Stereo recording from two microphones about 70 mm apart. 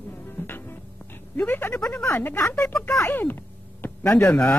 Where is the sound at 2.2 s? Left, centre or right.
Left.